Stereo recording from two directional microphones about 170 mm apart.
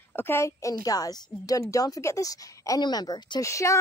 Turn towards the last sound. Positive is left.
turn(degrees=15)  # may be behind; listen again after turning